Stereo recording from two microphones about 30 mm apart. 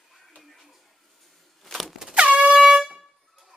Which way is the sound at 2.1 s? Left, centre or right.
Right.